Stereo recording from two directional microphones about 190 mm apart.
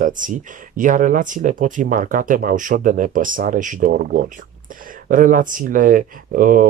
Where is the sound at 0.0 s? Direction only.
45° right (ahead or behind).